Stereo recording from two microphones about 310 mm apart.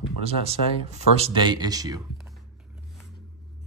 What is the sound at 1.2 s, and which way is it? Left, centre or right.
Speech, centre.